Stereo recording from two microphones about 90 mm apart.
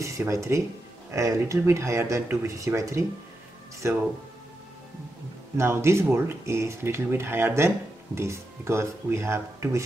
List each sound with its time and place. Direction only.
0.0 s speech: 35° right (ahead or behind)
5.6 s speech: 30° right (ahead or behind)